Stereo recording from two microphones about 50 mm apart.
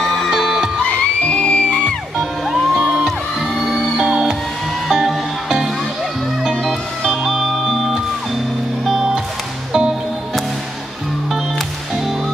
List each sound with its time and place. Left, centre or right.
0.0 s music: centre
0.3 s music: centre
0.8 s music: left
2.1 s music: centre
2.8 s music: right
3.1 s music: centre
4.0 s music: centre
6.5 s music: centre